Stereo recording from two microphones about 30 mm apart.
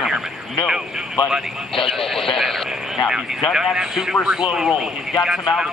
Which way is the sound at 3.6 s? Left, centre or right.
Centre.